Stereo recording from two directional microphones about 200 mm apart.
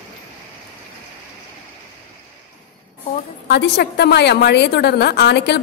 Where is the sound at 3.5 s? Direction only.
55° left (ahead or behind).